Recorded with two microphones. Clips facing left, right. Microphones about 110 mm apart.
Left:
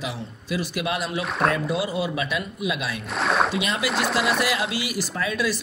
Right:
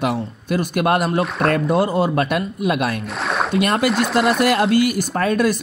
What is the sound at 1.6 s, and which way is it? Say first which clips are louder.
Speech: right 8 dB; 50° right (ahead or behind).